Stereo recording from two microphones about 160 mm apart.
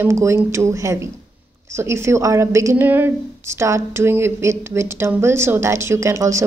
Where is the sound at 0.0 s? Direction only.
15° right (ahead or behind).